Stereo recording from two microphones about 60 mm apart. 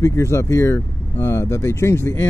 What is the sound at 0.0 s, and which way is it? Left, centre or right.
Speech, left.